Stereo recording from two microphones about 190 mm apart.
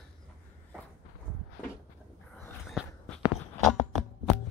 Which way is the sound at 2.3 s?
Centre (ahead or behind).